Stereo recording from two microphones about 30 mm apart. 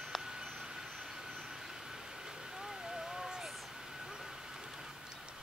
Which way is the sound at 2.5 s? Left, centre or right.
Centre.